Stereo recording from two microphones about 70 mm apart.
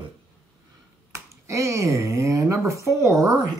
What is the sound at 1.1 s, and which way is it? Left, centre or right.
Finger snapping, right.